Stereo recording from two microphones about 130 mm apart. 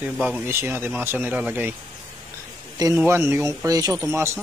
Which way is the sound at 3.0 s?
20° right (ahead or behind).